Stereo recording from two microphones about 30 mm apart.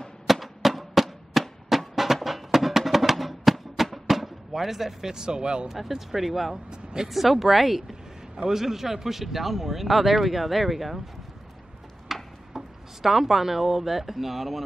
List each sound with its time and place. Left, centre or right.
0.3 s a sound: centre
1.7 s music: centre; by 5.7 s right
5.7 s speech: centre
6.7 s speech: right
7.1 s speech: centre
12.1 s speech: centre